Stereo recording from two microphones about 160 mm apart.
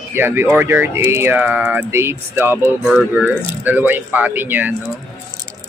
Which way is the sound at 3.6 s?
10° right (ahead or behind).